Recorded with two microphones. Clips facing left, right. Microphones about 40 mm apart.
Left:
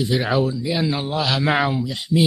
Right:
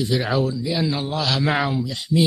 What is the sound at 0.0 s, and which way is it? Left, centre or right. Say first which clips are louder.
Speech: left 1 dB; centre.